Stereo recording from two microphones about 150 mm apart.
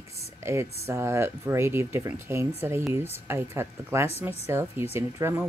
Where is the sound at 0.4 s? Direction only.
15° right (ahead or behind).